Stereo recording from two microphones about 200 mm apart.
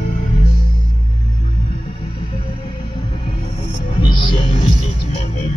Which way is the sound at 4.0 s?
25° left (ahead or behind).